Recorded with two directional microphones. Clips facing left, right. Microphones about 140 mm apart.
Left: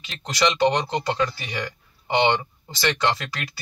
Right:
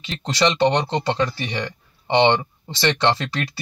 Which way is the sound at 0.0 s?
30° right (ahead or behind).